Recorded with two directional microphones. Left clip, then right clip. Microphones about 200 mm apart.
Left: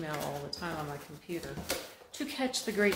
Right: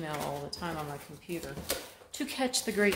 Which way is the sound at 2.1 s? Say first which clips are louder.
Right 2 dB; 35° right (ahead or behind).